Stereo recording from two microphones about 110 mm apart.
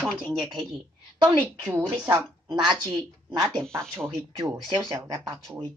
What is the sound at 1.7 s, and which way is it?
Speech, 15° right (ahead or behind).